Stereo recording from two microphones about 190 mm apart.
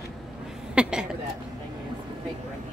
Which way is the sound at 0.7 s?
5° right (ahead or behind).